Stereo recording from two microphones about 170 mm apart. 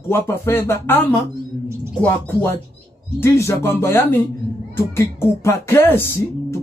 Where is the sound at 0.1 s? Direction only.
15° left (ahead or behind).